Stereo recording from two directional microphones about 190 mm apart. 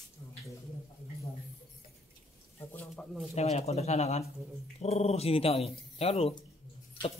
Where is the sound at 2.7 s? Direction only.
10° left (ahead or behind).